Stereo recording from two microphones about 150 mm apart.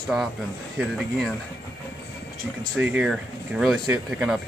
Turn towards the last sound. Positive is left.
turn(degrees=-10)  # may be behind; listen again after turning